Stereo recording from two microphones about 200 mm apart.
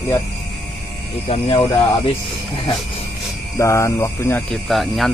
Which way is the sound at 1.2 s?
30° left (ahead or behind).